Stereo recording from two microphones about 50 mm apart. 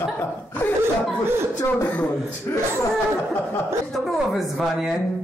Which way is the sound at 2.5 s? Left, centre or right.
Left.